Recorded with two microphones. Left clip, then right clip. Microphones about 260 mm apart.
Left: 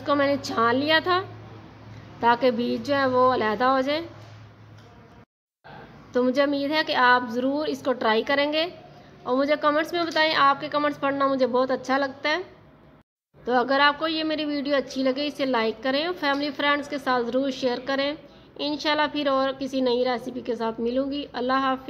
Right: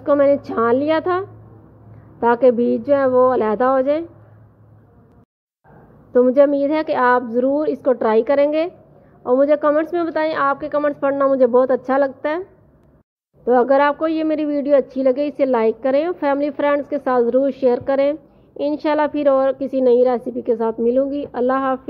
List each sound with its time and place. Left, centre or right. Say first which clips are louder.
0.0 s a woman's voice: right 8 dB; centre
6.1 s a woman's voice: right 9 dB; right
13.5 s a woman's voice: right 6 dB; right